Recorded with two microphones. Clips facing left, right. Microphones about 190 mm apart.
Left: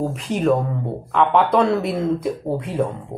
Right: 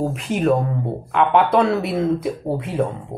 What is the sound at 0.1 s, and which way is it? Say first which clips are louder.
Speech: even; 10° right (ahead or behind).